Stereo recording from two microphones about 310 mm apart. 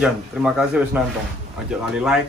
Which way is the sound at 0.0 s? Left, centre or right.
Centre.